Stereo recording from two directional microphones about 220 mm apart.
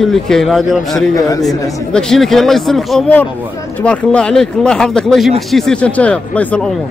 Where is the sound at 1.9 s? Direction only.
5° left (ahead or behind).